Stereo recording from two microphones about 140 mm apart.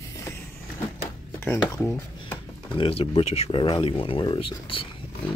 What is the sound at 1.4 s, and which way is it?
Speech, 15° left (ahead or behind).